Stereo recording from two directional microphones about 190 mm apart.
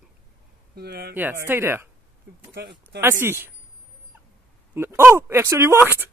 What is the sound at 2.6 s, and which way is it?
Speech, 55° right (ahead or behind).